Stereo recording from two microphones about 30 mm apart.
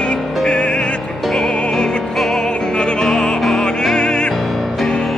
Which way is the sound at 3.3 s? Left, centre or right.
Centre.